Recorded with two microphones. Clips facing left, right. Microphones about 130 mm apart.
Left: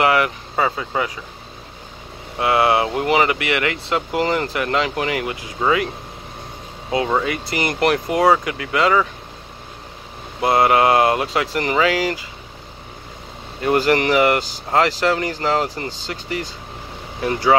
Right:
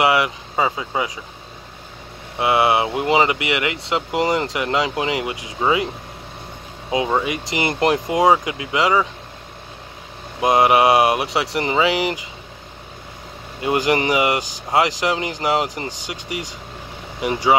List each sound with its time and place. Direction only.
0.0 s speech: 15° right (ahead or behind)
2.3 s speech: 20° right (ahead or behind)
6.9 s speech: 15° right (ahead or behind)
10.4 s speech: 15° right (ahead or behind)
13.6 s speech: 15° right (ahead or behind)